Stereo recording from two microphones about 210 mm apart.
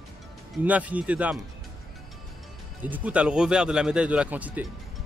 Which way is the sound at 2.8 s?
5° right (ahead or behind).